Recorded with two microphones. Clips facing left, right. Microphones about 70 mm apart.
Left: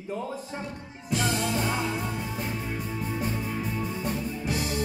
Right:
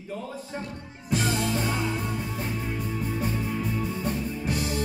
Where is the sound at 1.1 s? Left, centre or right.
Centre.